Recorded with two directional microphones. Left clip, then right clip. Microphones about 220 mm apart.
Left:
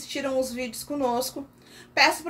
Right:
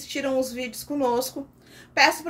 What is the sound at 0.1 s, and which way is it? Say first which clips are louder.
A woman's voice: right 1 dB; 10° right (ahead or behind).